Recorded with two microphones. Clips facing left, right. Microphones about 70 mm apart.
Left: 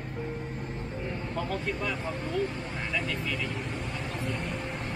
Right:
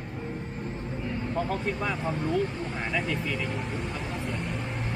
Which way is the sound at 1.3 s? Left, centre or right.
Centre.